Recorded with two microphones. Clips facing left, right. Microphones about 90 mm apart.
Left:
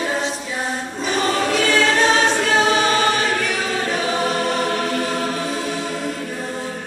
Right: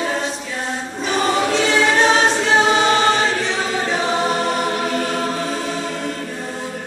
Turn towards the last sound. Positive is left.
turn(degrees=0)  # may be behind; listen again after turning